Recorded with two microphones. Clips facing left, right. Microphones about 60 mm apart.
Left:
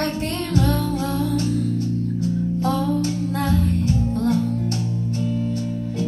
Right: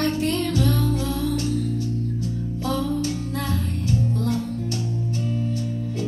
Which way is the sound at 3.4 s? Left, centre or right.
Left.